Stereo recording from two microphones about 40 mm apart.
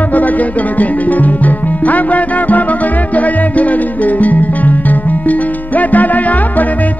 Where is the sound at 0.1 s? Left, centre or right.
Left.